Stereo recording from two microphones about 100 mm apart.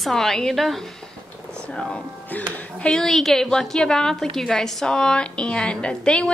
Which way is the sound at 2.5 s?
10° left (ahead or behind).